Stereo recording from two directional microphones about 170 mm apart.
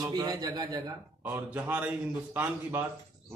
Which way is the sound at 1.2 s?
10° right (ahead or behind).